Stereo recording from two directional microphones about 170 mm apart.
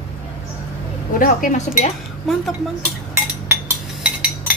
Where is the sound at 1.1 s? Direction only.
50° left (ahead or behind).